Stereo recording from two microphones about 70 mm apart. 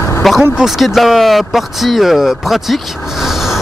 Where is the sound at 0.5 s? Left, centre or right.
Centre.